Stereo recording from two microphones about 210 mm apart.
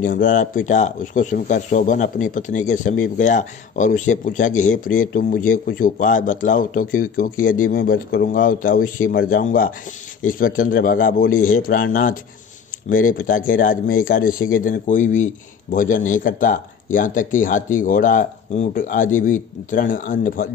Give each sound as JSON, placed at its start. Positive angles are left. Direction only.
{"t": 0.0, "sound": "a man's voice", "side_deg": 40}